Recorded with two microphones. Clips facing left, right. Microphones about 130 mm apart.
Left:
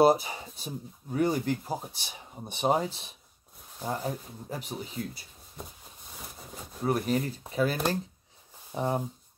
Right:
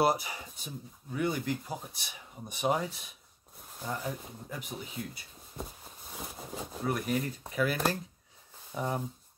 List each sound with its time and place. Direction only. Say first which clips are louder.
0.0 s speech: left 6 dB; 25° left (ahead or behind)
6.9 s speech: left 4 dB; 30° left (ahead or behind)